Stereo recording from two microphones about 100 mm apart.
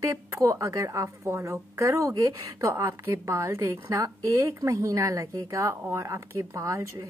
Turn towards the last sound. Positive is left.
turn(degrees=-30)  # may be behind; listen again after turning